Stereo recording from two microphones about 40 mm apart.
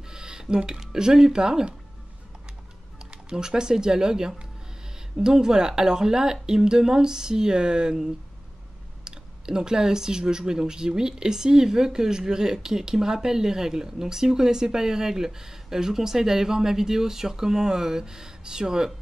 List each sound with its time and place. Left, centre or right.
0.0 s speech: centre
3.1 s speech: centre
9.0 s speech: centre